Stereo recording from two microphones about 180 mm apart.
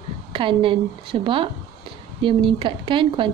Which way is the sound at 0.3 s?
30° right (ahead or behind).